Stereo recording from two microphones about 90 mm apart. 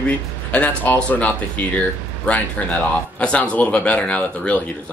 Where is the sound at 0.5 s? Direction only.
15° left (ahead or behind).